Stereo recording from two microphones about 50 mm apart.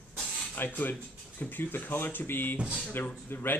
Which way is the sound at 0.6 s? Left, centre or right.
Left.